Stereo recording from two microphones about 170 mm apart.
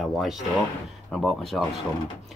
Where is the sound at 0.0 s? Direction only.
Centre (ahead or behind).